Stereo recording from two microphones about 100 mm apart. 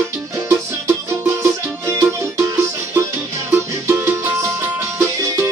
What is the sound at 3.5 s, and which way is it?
Music, 20° right (ahead or behind).